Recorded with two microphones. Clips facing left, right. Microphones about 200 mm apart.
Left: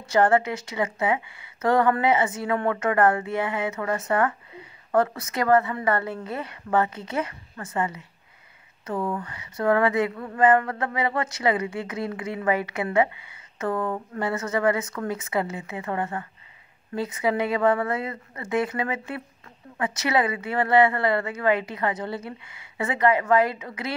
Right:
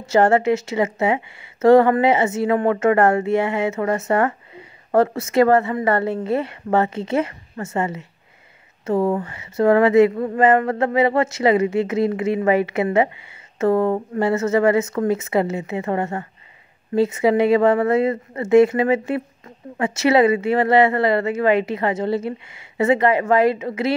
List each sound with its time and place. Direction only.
0.0 s speech: 25° right (ahead or behind)
8.9 s speech: 40° right (ahead or behind)
9.2 s speech: 25° right (ahead or behind)